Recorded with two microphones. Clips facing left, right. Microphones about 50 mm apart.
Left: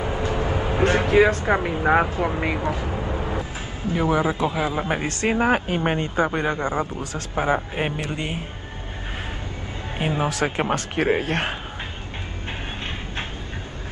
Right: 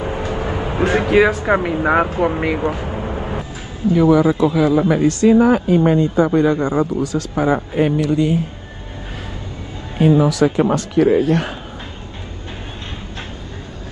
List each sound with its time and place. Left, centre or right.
0.0 s vehicle: right
0.9 s speech: right
1.4 s speech: right
2.2 s a sound: right
3.8 s a man's voice: left
9.9 s a man's voice: left